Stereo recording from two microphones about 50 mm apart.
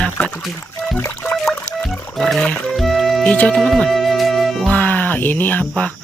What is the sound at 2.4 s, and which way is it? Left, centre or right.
Speech, left.